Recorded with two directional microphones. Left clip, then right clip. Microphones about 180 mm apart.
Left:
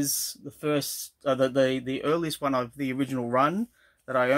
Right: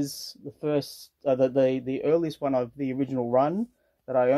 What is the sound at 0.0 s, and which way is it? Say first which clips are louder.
Speech: left 3 dB; 30° left (ahead or behind).